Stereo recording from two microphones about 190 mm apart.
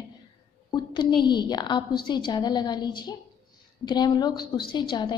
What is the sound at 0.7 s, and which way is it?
A woman's voice, 25° left (ahead or behind).